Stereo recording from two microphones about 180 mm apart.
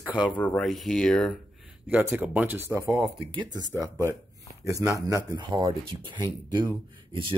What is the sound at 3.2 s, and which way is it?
Speech, 25° right (ahead or behind).